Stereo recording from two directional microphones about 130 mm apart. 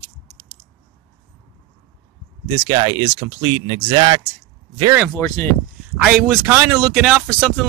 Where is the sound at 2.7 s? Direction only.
40° right (ahead or behind).